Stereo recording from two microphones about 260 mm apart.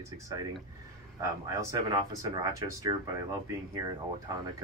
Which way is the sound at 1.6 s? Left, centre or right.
Centre.